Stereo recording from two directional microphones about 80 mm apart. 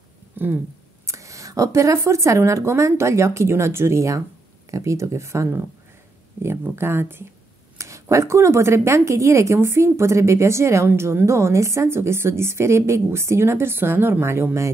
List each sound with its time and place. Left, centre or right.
0.4 s a sound: right
1.0 s a woman's voice: right
7.7 s a woman's voice: right